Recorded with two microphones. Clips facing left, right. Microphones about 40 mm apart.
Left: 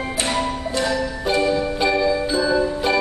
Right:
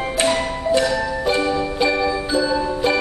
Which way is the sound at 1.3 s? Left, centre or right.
Centre.